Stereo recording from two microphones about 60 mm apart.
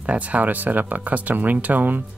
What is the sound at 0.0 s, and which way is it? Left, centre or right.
Speech, right.